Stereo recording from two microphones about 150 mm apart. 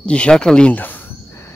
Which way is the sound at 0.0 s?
5° left (ahead or behind).